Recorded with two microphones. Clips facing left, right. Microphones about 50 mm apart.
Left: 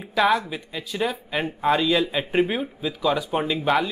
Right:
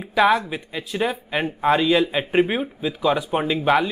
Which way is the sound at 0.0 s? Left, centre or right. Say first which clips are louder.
Right 3 dB; centre.